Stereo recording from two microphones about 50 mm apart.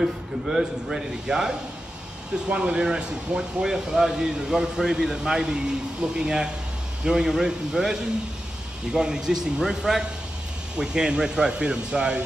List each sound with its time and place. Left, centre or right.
0.0 s speech: centre
2.5 s speech: centre